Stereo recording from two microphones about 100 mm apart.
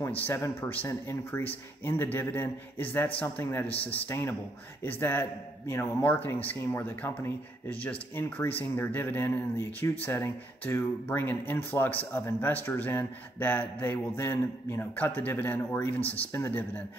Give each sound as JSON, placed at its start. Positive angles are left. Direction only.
{"t": 0.3, "sound": "a man's voice", "side_deg": 25}